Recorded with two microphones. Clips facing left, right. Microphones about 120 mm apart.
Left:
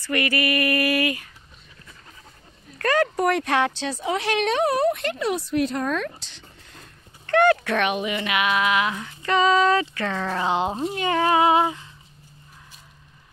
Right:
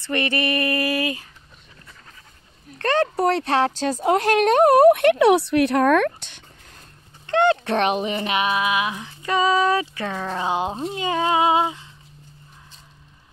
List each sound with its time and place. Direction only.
0.0 s female singing: 25° right (ahead or behind)
2.8 s speech: 30° right (ahead or behind); by 6.4 s 55° right (ahead or behind)
7.2 s speech: 20° right (ahead or behind)